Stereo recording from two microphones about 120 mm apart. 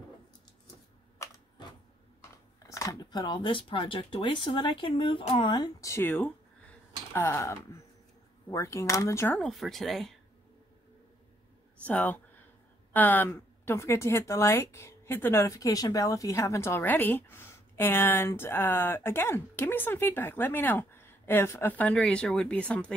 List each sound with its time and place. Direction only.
2.2 s speech: 25° left (ahead or behind); by 5.7 s 40° left (ahead or behind)
5.8 s a woman's voice: 25° left (ahead or behind)
9.4 s speech: centre (ahead or behind)
11.8 s a woman's voice: 15° left (ahead or behind)